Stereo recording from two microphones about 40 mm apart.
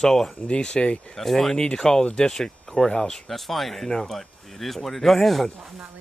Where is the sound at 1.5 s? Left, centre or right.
Centre.